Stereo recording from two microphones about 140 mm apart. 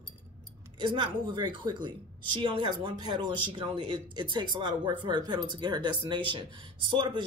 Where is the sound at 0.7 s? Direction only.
35° right (ahead or behind).